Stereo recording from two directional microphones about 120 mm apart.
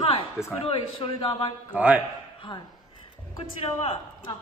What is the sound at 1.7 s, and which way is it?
Speech, 10° right (ahead or behind).